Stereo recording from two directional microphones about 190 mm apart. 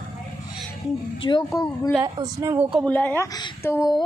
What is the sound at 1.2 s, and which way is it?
Speech, 20° left (ahead or behind).